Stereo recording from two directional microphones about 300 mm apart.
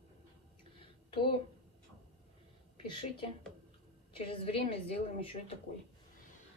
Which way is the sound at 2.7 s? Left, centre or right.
Centre.